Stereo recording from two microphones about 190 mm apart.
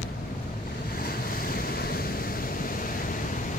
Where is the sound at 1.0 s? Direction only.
50° left (ahead or behind).